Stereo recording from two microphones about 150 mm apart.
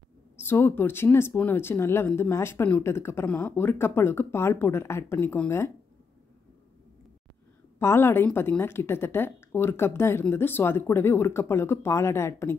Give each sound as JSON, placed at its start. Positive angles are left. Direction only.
{"t": 0.4, "sound": "speech", "side_deg": 15}
{"t": 7.8, "sound": "speech", "side_deg": 15}